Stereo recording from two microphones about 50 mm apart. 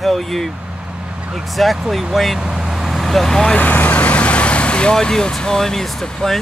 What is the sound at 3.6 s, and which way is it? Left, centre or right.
Speech, left.